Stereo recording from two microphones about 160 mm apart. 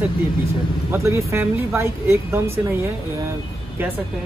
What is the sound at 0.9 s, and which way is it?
Speech, 15° right (ahead or behind).